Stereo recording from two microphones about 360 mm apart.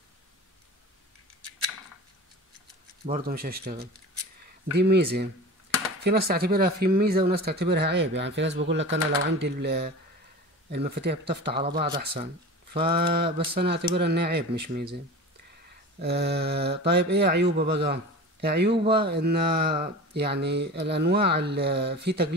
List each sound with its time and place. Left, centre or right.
3.1 s speech: right
16.0 s speech: right